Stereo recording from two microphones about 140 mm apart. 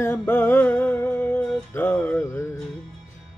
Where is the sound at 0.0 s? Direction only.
15° left (ahead or behind).